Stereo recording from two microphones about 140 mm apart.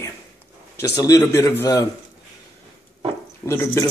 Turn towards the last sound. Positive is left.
turn(degrees=20)  # may be behind; listen again after turning